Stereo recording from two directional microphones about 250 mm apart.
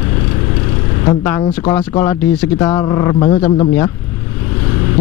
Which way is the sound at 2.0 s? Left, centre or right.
Centre.